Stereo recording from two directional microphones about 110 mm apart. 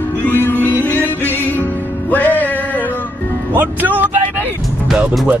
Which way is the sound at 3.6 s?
15° right (ahead or behind).